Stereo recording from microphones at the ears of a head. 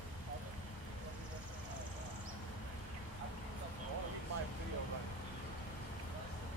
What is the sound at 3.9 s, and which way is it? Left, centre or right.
Vehicle, right.